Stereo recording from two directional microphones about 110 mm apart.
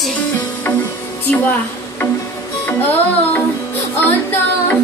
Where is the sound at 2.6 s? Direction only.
15° left (ahead or behind).